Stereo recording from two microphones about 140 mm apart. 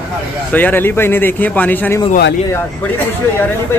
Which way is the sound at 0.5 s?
15° left (ahead or behind).